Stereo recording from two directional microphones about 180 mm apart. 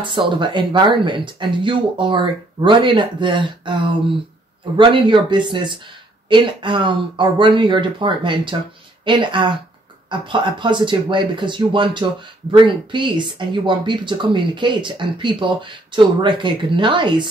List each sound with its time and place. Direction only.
0.4 s speech: 25° right (ahead or behind)